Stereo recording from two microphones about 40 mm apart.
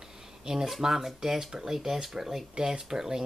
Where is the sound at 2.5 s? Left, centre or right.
Right.